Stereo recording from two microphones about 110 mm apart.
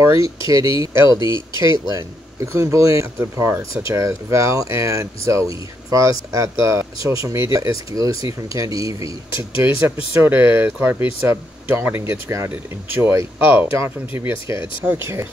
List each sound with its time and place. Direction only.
0.0 s speech: 30° right (ahead or behind)
1.1 s speech: 45° left (ahead or behind)
1.6 s speech: 30° right (ahead or behind)